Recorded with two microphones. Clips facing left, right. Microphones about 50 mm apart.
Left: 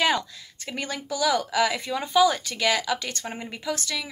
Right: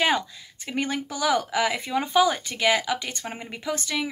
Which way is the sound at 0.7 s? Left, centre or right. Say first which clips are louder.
Right 3 dB; right.